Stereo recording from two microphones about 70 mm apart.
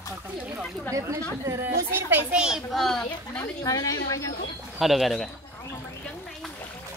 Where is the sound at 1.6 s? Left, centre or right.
Right.